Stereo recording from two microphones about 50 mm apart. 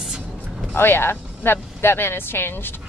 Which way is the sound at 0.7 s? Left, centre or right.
Left.